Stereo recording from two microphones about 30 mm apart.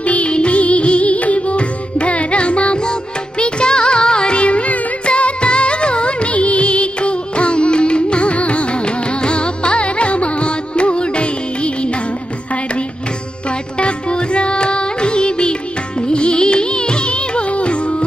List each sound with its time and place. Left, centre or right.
0.0 s music: left
5.0 s music of bollywood: left
13.7 s music: left